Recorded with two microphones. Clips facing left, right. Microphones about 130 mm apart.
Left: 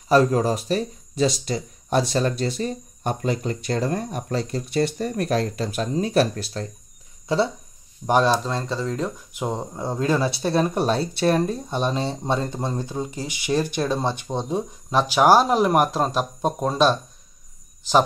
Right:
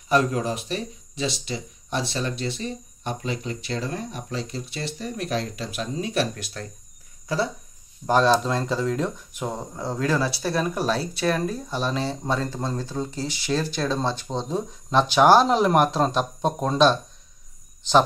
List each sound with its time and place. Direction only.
0.1 s speech: 35° left (ahead or behind)
8.1 s speech: 10° left (ahead or behind)
9.4 s speech: 20° left (ahead or behind)